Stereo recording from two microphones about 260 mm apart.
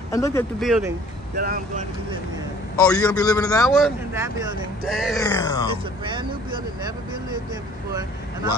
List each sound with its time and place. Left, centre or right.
0.1 s a man's voice: centre
0.6 s speech: centre
1.3 s speech: right
2.9 s a man's voice: centre
3.6 s speech: centre
4.1 s speech: centre
5.2 s a man's voice: centre
6.0 s speech: centre